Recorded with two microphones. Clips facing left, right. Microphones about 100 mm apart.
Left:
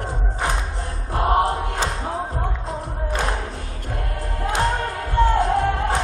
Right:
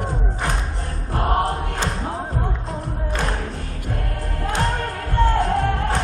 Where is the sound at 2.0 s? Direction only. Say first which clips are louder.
Even; 10° left (ahead or behind).